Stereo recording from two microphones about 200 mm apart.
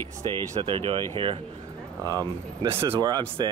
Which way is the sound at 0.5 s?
25° right (ahead or behind).